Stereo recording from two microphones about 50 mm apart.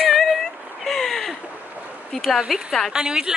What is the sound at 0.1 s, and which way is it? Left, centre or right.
Female singing, centre.